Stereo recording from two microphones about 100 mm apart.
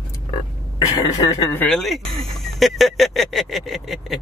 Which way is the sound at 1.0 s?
40° left (ahead or behind).